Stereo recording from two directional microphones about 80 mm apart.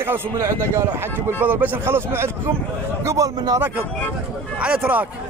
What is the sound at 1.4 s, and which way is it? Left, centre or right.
Speech, right.